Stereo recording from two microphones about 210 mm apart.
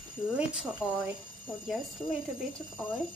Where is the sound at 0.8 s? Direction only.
5° right (ahead or behind).